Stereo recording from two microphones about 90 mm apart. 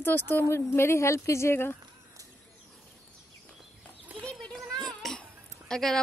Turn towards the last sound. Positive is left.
turn(degrees=5)  # may be behind; listen again after turning